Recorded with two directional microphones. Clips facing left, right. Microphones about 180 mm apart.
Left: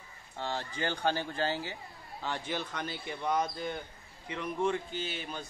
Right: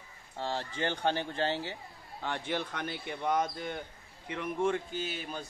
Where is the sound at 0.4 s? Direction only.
30° right (ahead or behind).